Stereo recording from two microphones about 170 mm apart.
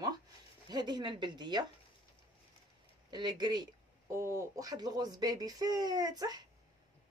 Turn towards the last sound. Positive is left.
turn(degrees=-25)  # may be behind; listen again after turning